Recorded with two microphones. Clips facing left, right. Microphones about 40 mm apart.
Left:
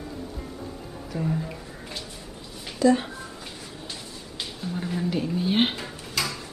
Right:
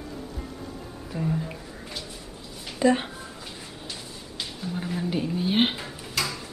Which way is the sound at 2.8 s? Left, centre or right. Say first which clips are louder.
Left 1 dB; right.